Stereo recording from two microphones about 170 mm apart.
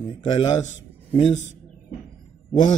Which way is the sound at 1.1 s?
35° left (ahead or behind).